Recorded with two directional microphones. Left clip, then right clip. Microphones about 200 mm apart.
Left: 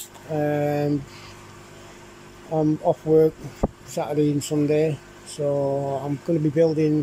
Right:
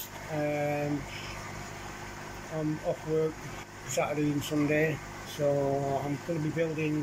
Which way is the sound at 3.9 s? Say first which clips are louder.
Left 5 dB; 20° left (ahead or behind).